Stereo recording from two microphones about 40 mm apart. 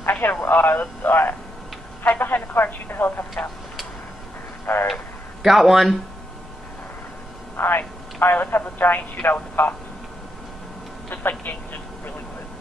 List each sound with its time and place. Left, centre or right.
0.0 s radio: left
0.5 s speech: left
4.7 s speech: left
5.4 s speech: centre
7.5 s speech: left
11.1 s speech: left